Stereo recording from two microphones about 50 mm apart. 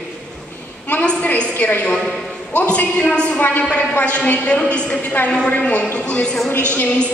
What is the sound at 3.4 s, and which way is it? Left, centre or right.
Speech, left.